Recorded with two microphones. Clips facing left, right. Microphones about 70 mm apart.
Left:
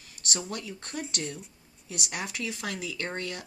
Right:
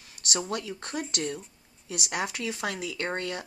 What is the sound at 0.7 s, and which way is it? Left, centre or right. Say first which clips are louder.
Speech: right 3 dB; right.